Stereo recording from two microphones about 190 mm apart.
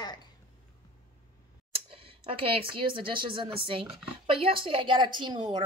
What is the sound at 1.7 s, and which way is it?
Speech, 30° right (ahead or behind).